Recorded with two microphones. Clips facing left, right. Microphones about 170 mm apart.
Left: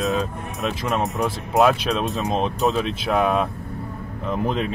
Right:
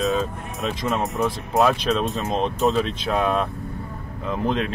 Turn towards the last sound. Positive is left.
turn(degrees=5)  # may be behind; listen again after turning